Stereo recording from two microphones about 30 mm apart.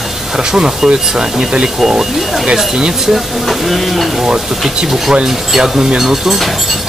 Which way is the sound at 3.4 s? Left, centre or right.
Centre.